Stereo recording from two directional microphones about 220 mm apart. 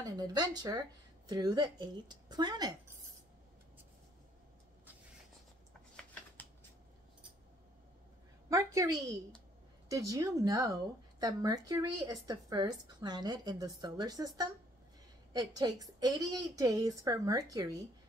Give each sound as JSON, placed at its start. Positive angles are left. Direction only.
{"t": 0.0, "sound": "speech", "side_deg": -20}
{"t": 5.7, "sound": "a sound", "side_deg": 5}
{"t": 8.5, "sound": "speech", "side_deg": -15}